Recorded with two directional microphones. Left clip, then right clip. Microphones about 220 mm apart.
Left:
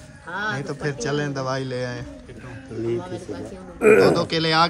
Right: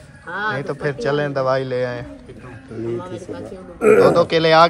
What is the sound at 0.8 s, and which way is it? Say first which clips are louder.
Speech: right 5 dB; 10° left (ahead or behind).